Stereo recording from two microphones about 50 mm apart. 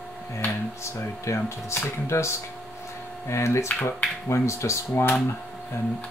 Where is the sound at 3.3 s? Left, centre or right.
Left.